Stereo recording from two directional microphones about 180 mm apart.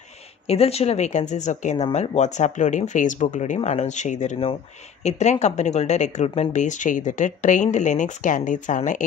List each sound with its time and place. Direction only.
0.5 s speech: 35° left (ahead or behind)